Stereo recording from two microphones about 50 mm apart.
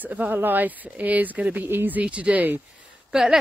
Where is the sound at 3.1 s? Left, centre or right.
Centre.